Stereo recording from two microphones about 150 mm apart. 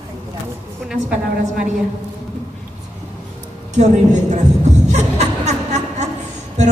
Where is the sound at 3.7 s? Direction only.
50° right (ahead or behind).